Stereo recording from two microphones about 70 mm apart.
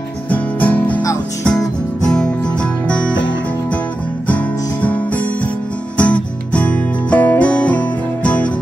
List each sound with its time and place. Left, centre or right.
0.3 s music: left
1.4 s music: centre
4.3 s music: left